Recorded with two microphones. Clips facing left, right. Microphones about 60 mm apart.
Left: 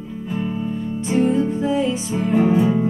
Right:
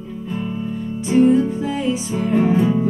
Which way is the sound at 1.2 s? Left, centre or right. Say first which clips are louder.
Right 3 dB; centre.